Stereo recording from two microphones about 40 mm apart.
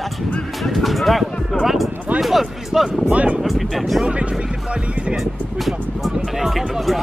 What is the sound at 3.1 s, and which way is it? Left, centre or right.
Speech, right.